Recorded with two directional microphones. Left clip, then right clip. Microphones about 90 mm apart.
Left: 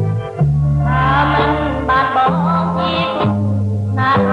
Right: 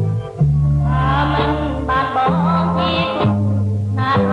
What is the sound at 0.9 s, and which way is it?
Music, 20° left (ahead or behind).